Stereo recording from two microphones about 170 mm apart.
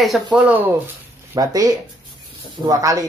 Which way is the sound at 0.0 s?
Centre (ahead or behind).